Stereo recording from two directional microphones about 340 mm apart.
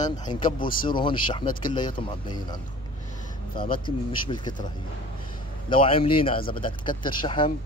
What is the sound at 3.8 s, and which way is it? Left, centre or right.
Speech, centre.